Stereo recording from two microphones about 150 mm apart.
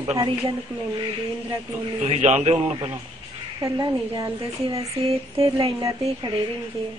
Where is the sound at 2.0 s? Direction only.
45° right (ahead or behind).